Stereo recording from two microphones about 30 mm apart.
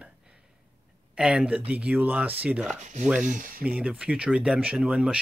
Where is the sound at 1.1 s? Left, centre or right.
Right.